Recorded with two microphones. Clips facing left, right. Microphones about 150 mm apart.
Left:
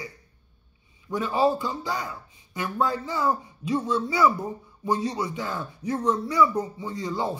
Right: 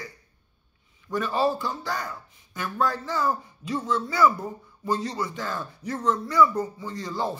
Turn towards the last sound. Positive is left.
turn(degrees=15)  # may be behind; listen again after turning